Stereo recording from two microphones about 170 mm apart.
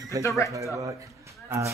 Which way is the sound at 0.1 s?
20° right (ahead or behind).